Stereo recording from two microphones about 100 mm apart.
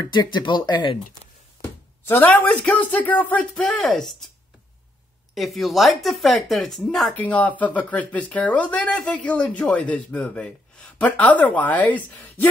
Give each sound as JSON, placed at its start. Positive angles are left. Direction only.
{"t": 0.0, "sound": "speech", "side_deg": 50}
{"t": 2.0, "sound": "speech", "side_deg": 20}
{"t": 3.5, "sound": "speech", "side_deg": 5}
{"t": 5.3, "sound": "speech", "side_deg": 0}
{"t": 7.2, "sound": "speech", "side_deg": 15}